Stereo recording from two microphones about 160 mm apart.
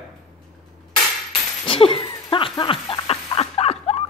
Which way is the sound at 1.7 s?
35° left (ahead or behind).